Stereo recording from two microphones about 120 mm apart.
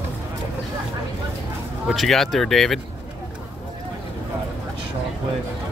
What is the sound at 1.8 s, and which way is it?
Speech, centre (ahead or behind).